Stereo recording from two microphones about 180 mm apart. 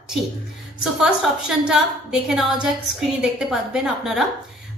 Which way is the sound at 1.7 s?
Centre (ahead or behind).